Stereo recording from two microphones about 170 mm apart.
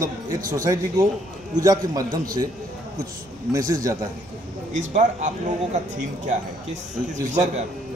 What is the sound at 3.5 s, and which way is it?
Speech, 20° right (ahead or behind).